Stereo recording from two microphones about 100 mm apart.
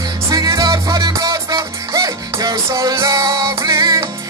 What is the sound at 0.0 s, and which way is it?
Music, 35° right (ahead or behind).